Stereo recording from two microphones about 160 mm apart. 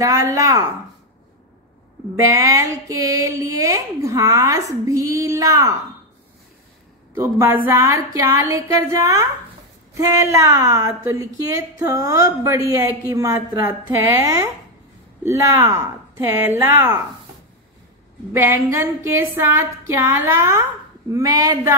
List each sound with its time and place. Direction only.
0.0 s speech: 20° right (ahead or behind)
2.2 s speech: 20° right (ahead or behind)
7.2 s speech: 15° right (ahead or behind)
16.3 s a sound: 15° right (ahead or behind)
18.3 s a sound: 15° right (ahead or behind)
21.1 s speech: 25° right (ahead or behind)